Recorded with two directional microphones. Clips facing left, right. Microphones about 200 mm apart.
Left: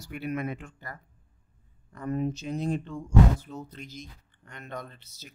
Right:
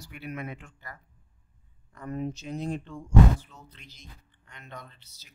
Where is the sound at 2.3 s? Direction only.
45° left (ahead or behind).